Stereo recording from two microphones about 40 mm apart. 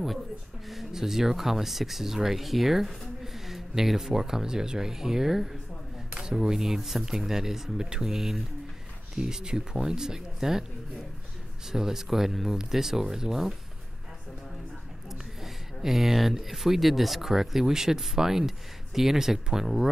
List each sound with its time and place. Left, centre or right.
0.7 s speech: centre
11.7 s speech: centre
15.0 s speech: centre